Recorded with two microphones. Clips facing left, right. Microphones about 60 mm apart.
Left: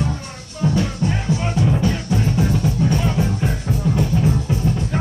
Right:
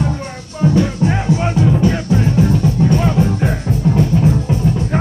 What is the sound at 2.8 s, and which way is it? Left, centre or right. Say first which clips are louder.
Music: right 5 dB; right.